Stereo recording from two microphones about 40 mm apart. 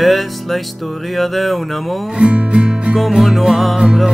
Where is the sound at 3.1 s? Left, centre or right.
Centre.